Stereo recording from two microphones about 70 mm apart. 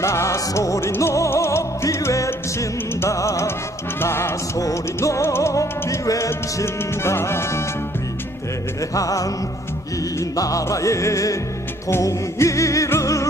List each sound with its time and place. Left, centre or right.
0.0 s music: left
4.6 s music: left
6.6 s music: left
8.9 s music: left
10.3 s music: left